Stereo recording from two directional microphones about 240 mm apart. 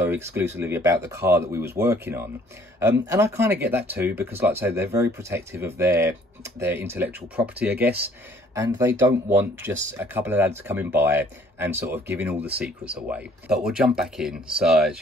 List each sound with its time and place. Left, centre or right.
0.0 s speech: centre